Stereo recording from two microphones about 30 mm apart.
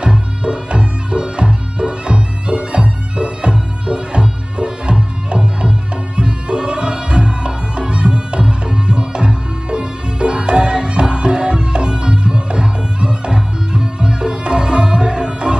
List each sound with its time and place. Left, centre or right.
0.0 s music: right